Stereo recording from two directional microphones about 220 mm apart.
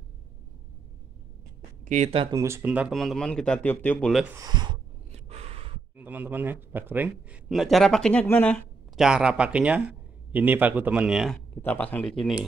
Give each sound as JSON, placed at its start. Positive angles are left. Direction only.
{"t": 1.9, "sound": "speech", "side_deg": -30}
{"t": 2.3, "sound": "a man's voice", "side_deg": -10}
{"t": 4.4, "sound": "a sound", "side_deg": -20}
{"t": 5.9, "sound": "a man's voice", "side_deg": -10}
{"t": 11.6, "sound": "a man's voice", "side_deg": 10}